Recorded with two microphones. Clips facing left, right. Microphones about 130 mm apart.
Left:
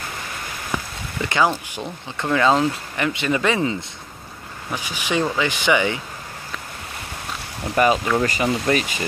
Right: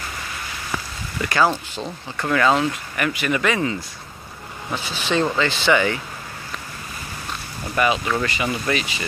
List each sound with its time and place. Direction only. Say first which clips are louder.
0.7 s a sound: left 2 dB; 15° left (ahead or behind)
1.2 s speech: even; 20° left (ahead or behind)
4.6 s speech: right 1 dB; 15° left (ahead or behind)
7.7 s speech: left 3 dB; 40° left (ahead or behind)